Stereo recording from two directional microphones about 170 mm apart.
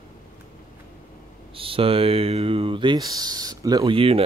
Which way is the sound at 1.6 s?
30° right (ahead or behind).